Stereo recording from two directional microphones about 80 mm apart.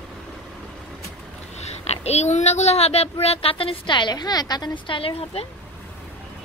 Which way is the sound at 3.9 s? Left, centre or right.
Left.